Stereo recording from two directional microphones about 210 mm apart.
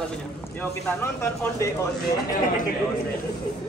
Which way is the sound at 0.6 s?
10° left (ahead or behind).